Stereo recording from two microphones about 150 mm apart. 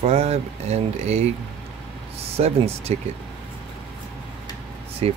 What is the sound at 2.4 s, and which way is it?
Speech, 45° right (ahead or behind).